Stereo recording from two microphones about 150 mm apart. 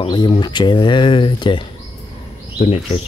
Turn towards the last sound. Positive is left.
turn(degrees=45)  # may be behind; listen again after turning